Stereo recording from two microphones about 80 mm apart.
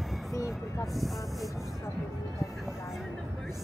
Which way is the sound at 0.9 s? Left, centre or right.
Centre.